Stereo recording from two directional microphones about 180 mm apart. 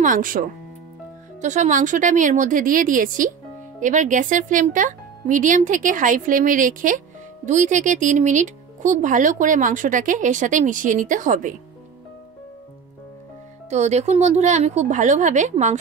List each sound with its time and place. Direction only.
0.0 s speech: 50° right (ahead or behind)
13.7 s a woman's voice: 40° right (ahead or behind)